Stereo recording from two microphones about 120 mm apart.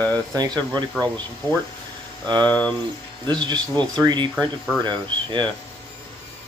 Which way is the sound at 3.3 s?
40° right (ahead or behind).